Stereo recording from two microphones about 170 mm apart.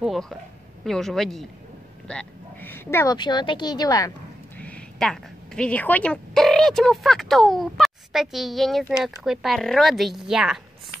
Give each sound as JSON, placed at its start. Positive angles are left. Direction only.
{"t": 0.0, "sound": "a sound", "side_deg": 0}
{"t": 0.8, "sound": "a woman's voice", "side_deg": 0}
{"t": 3.2, "sound": "speech", "side_deg": 25}
{"t": 4.6, "sound": "a woman's voice", "side_deg": 5}